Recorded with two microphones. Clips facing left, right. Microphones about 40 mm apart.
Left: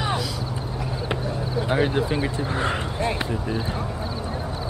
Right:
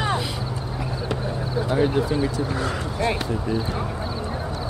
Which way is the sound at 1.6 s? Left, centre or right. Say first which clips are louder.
Right 1 dB; left.